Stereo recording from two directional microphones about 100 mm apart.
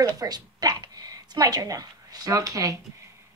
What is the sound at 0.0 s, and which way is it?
A woman's voice, 40° right (ahead or behind).